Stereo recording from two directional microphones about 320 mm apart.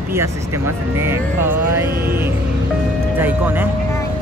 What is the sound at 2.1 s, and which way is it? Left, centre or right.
Speech, centre.